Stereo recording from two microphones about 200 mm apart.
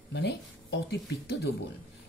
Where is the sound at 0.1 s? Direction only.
60° left (ahead or behind).